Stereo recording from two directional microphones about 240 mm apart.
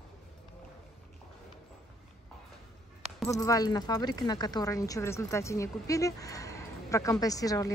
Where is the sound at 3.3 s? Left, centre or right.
Centre.